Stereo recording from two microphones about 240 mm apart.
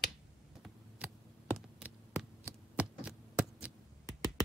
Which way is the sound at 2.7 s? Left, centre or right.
Centre.